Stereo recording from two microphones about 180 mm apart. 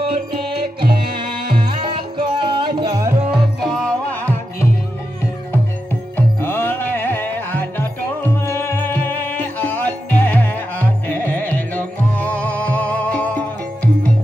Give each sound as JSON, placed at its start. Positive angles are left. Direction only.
{"t": 0.1, "sound": "music", "side_deg": -30}
{"t": 3.3, "sound": "music", "side_deg": 5}
{"t": 6.1, "sound": "music", "side_deg": 10}